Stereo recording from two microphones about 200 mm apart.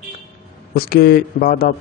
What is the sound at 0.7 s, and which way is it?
Speech, 50° left (ahead or behind).